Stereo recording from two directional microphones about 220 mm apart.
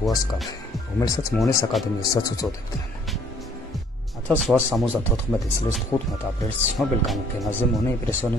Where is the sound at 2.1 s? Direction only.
15° left (ahead or behind).